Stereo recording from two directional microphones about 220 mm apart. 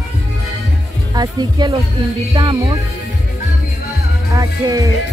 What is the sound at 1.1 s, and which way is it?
Speech, 20° right (ahead or behind).